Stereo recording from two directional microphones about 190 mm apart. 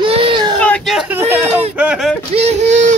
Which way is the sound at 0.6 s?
5° left (ahead or behind).